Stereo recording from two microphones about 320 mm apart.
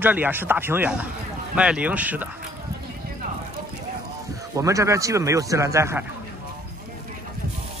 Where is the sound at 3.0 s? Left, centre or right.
Right.